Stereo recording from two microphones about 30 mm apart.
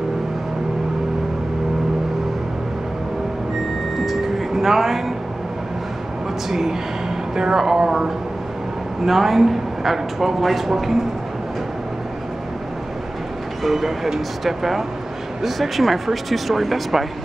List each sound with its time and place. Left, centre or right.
4.0 s a sound: centre
7.3 s speech: centre
9.0 s speech: centre
13.6 s speech: centre